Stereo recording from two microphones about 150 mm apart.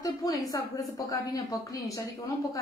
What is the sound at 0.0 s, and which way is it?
A woman's voice, 25° left (ahead or behind).